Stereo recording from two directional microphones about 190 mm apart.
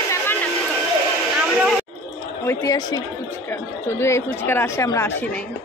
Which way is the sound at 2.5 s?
20° left (ahead or behind).